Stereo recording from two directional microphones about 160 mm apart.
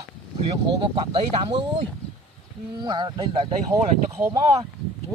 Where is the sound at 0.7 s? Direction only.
30° right (ahead or behind).